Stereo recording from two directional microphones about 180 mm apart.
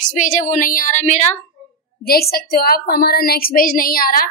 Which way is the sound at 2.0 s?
60° left (ahead or behind).